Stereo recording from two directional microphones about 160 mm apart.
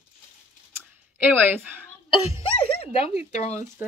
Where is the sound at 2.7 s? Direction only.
40° left (ahead or behind).